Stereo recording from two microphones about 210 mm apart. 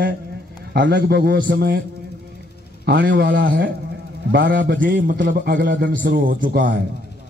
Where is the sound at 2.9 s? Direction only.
50° right (ahead or behind).